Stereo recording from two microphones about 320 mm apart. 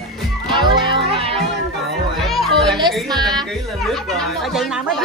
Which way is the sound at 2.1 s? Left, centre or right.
Centre.